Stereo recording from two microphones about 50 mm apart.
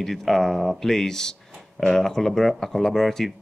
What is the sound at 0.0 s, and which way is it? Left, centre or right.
Speech, centre.